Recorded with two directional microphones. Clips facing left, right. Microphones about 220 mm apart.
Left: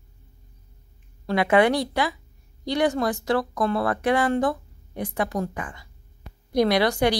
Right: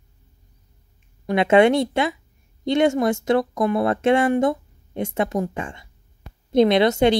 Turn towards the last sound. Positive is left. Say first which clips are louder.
# right 4 dB
turn(degrees=-25)  # may be behind; listen again after turning